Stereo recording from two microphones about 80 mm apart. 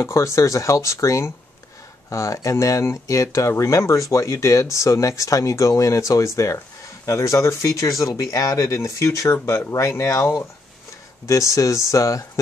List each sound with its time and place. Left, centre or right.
0.0 s speech: left